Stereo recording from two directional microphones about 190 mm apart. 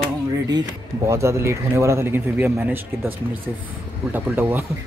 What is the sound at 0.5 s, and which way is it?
Speech, 20° right (ahead or behind).